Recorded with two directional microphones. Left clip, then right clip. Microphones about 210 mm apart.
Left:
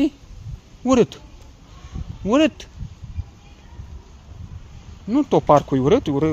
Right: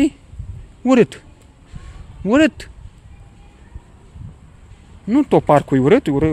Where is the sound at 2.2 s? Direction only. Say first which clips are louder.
Right 3 dB; 30° right (ahead or behind).